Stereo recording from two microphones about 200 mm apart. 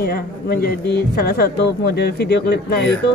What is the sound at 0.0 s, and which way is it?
Speech, 50° left (ahead or behind).